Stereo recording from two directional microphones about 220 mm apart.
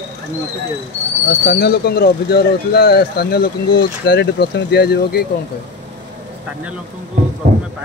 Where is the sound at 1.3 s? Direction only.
45° left (ahead or behind).